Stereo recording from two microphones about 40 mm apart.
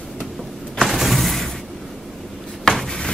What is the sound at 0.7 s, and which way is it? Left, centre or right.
Mechanisms, centre.